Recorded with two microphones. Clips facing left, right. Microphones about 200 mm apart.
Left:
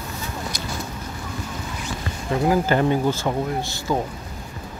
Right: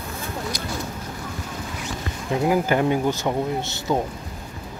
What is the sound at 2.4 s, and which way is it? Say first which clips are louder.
Speech: left 1 dB; 15° right (ahead or behind).